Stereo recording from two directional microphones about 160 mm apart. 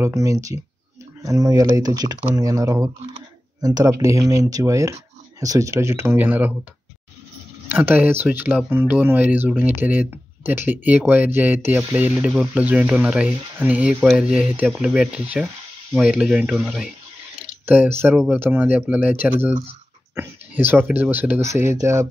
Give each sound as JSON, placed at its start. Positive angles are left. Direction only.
{"t": 0.0, "sound": "speech", "side_deg": -20}
{"t": 7.6, "sound": "speech", "side_deg": -10}